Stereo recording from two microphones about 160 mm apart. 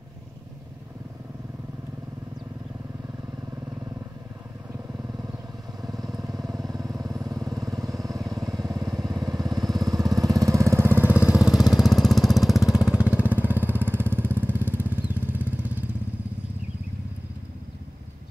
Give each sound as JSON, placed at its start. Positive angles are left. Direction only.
{"t": 5.8, "sound": "vehicle", "side_deg": -25}
{"t": 9.8, "sound": "lawn mower", "side_deg": -20}